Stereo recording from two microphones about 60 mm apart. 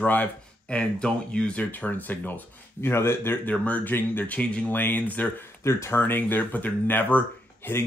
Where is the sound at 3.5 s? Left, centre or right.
Left.